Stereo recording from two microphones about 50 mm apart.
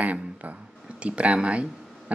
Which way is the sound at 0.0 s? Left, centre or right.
Right.